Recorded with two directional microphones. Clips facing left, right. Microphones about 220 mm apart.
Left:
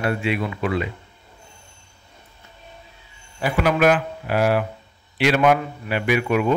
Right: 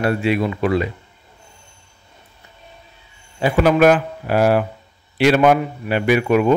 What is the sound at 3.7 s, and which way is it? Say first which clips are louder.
Speech: right 4 dB; 40° right (ahead or behind).